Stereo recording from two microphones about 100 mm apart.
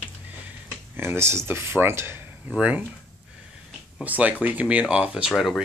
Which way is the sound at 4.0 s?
15° right (ahead or behind).